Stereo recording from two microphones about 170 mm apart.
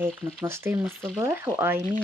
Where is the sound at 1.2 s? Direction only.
15° right (ahead or behind).